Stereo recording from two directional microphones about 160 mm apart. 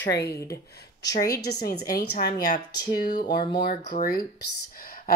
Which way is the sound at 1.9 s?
70° left (ahead or behind).